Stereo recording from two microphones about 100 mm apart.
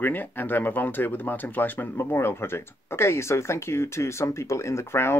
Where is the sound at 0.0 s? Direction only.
20° left (ahead or behind).